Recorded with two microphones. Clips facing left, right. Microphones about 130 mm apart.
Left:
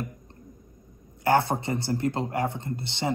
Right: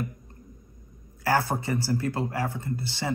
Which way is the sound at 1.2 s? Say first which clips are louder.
Left 3 dB; 25° left (ahead or behind).